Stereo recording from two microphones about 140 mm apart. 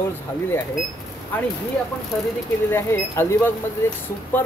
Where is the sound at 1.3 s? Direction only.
10° left (ahead or behind).